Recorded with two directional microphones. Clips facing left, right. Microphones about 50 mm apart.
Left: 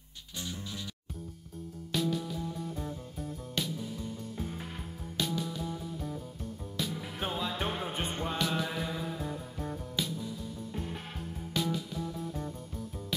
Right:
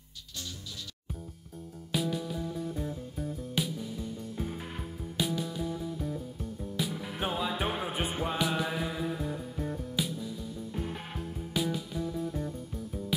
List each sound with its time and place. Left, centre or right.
0.4 s music: left
1.9 s music: centre
11.5 s music: centre